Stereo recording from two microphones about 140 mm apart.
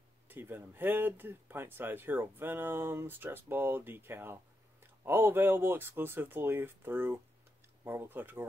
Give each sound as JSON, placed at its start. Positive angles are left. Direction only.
{"t": 0.3, "sound": "speech", "side_deg": -15}